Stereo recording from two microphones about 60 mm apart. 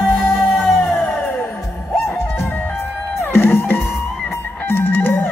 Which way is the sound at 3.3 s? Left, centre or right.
Left.